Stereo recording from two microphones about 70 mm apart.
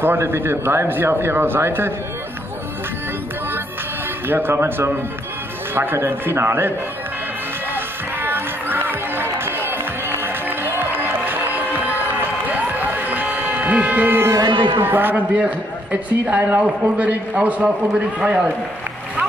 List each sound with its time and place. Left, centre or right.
0.0 s speech: right
4.3 s speech: right
7.7 s music: right
12.4 s a sound: right
14.8 s a man's voice: right